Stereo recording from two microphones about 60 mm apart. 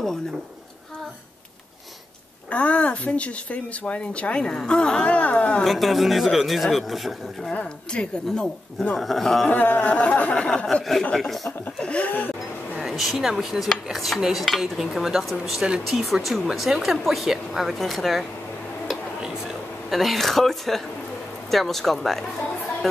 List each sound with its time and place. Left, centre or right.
2.5 s speech: left
5.6 s dishes: centre
7.5 s speech: centre
8.9 s dishes: centre
9.5 s speech: left
11.1 s dishes: centre
11.8 s speech: centre
12.7 s dishes: centre
19.9 s dishes: centre